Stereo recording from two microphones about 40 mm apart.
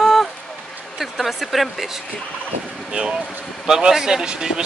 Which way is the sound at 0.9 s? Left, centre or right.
Centre.